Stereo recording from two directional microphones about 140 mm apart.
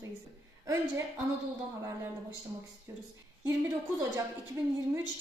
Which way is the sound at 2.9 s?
25° right (ahead or behind).